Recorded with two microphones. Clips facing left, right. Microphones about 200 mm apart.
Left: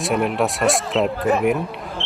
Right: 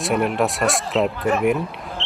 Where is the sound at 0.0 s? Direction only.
Centre (ahead or behind).